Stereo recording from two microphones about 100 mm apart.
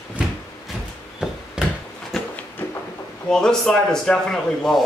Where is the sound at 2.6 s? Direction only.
20° left (ahead or behind).